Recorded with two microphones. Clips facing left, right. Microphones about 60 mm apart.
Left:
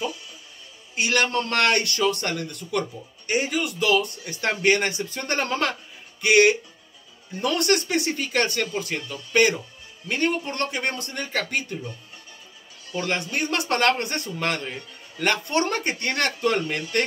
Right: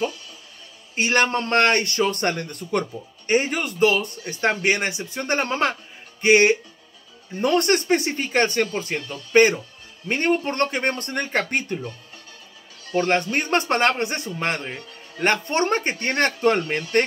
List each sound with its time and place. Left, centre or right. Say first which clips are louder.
0.9 s speech: right 2 dB; right
12.9 s speech: right 6 dB; right